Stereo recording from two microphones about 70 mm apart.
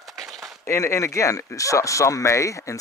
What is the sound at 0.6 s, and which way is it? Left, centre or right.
Speech, left.